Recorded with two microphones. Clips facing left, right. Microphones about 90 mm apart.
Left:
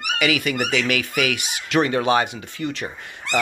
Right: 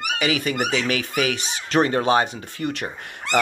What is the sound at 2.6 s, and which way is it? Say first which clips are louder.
Speech: right 1 dB; 55° right (ahead or behind).